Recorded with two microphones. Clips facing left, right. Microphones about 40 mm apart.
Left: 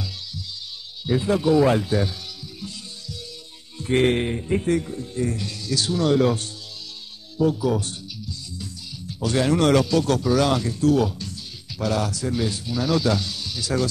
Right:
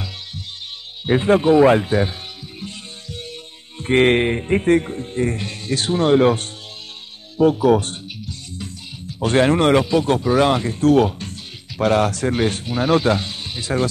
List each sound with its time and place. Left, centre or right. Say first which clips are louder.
1.0 s speech: right 6 dB; right
3.7 s speech: right 5 dB; right
7.3 s music: right 7 dB; right
9.2 s speech: right 5 dB; right
9.6 s speech: right 3 dB; right